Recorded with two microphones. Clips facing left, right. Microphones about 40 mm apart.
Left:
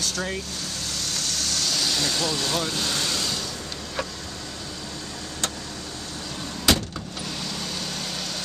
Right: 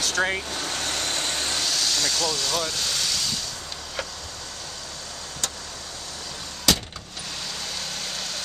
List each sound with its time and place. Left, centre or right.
0.0 s speech: right
0.7 s vehicle: right
1.6 s vehicle: centre
6.7 s vehicle: centre